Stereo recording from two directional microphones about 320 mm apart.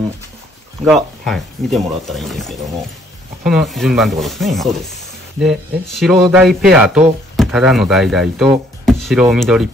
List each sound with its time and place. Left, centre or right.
0.8 s speech: centre